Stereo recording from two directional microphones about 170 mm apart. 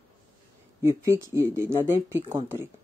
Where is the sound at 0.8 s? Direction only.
15° right (ahead or behind).